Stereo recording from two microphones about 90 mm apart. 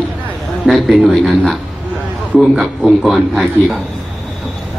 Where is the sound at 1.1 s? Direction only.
Centre (ahead or behind).